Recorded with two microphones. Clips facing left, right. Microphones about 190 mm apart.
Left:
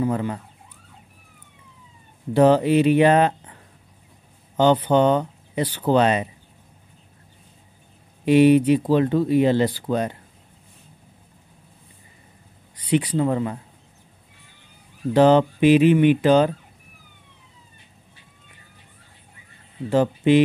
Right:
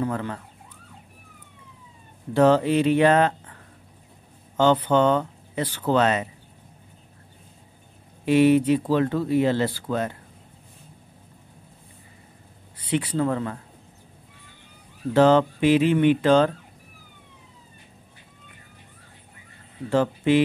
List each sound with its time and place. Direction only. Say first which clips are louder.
0.0 s speech: left 4 dB; 15° left (ahead or behind)
2.3 s speech: left 2 dB; 15° left (ahead or behind)
4.6 s speech: left 2 dB; 10° left (ahead or behind)
8.3 s speech: left 3 dB; 20° left (ahead or behind)
13.0 s speech: left 2 dB; 15° left (ahead or behind)
15.1 s speech: left 2 dB; 15° left (ahead or behind)
19.9 s speech: left 3 dB; 20° left (ahead or behind)